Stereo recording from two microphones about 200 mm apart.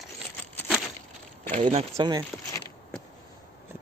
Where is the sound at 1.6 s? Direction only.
30° right (ahead or behind).